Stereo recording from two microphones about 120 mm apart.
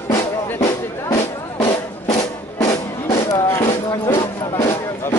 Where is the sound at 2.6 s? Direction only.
25° left (ahead or behind).